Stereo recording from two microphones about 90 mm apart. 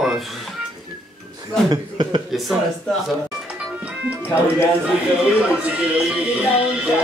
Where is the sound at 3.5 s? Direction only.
15° right (ahead or behind).